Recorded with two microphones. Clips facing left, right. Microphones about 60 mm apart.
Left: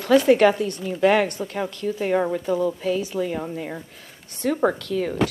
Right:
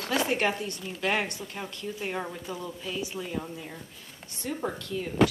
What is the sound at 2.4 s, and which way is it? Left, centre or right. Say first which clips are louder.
A woman's voice: left 14 dB; left.